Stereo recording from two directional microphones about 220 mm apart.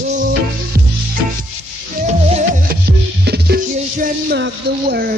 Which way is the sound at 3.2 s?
50° right (ahead or behind).